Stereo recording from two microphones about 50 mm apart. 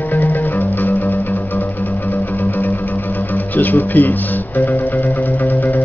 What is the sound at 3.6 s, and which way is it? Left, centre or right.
Speech, left.